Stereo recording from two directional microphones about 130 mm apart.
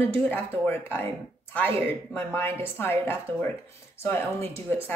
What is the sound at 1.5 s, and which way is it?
A woman's voice, 15° left (ahead or behind).